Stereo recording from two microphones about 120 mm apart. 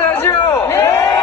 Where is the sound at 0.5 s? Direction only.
20° left (ahead or behind).